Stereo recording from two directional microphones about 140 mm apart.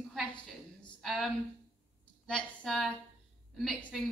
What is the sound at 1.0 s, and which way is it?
Speech, centre (ahead or behind).